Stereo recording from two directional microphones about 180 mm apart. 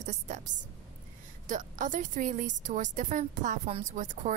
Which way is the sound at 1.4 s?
45° right (ahead or behind).